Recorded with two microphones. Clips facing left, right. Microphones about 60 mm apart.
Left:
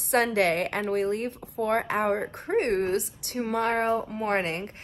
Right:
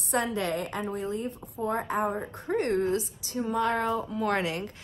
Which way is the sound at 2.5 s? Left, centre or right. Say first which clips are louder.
Left 2 dB; left.